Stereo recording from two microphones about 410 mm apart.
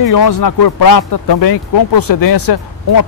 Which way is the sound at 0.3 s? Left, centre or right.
Left.